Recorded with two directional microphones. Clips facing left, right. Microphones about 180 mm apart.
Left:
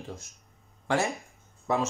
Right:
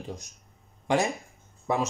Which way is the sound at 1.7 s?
15° right (ahead or behind).